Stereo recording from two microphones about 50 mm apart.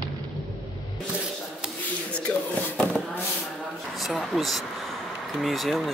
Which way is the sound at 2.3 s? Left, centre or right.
Left.